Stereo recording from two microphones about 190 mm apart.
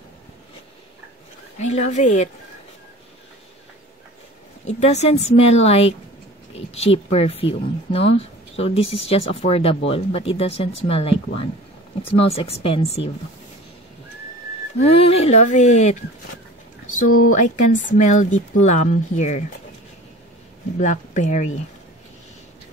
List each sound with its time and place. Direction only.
1.6 s speech: 35° left (ahead or behind)
4.6 s speech: 35° left (ahead or behind)
14.8 s speech: 30° left (ahead or behind)
17.3 s speech: 40° left (ahead or behind)
20.7 s speech: 40° left (ahead or behind)